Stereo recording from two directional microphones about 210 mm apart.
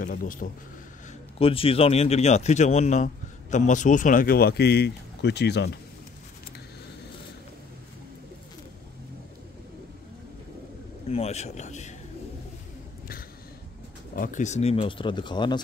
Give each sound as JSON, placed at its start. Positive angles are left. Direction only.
{"t": 0.0, "sound": "speech", "side_deg": 40}
{"t": 1.4, "sound": "speech", "side_deg": 25}
{"t": 11.1, "sound": "speech", "side_deg": 30}
{"t": 14.1, "sound": "speech", "side_deg": 40}